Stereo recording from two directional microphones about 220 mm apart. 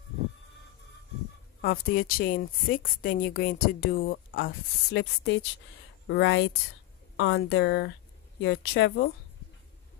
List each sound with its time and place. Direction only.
1.6 s a woman's voice: 40° left (ahead or behind)